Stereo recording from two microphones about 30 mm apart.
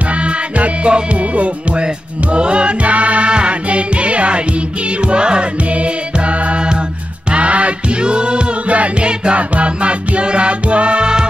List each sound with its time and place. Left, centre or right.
0.1 s music: right
1.3 s music: right
2.3 s music: right
2.9 s music: right
3.3 s music: right
5.0 s music: right
8.0 s music: right
8.6 s music: right
9.0 s music: right